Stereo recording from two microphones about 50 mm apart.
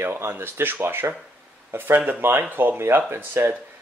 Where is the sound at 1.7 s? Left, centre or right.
Right.